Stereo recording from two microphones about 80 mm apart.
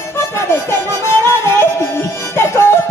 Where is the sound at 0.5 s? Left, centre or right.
Left.